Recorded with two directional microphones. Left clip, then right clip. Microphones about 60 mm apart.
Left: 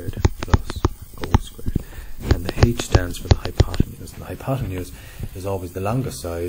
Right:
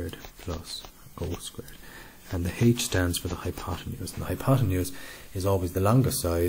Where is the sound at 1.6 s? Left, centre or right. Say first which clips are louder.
Left 5 dB; right.